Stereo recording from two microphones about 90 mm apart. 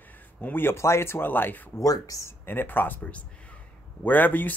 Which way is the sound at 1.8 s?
40° left (ahead or behind).